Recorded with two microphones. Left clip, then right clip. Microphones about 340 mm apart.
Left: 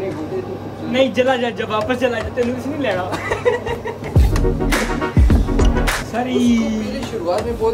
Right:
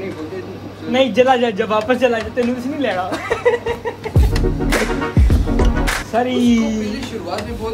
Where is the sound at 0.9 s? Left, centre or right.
Centre.